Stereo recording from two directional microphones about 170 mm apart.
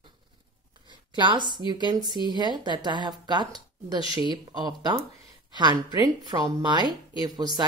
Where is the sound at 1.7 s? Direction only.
25° right (ahead or behind).